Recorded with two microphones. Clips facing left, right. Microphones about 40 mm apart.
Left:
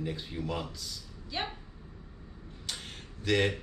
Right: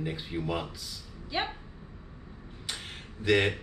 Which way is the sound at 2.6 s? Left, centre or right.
Centre.